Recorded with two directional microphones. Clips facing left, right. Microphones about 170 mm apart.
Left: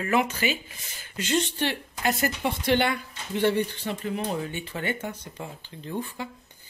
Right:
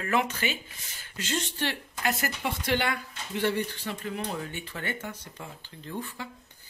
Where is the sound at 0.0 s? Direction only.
10° left (ahead or behind).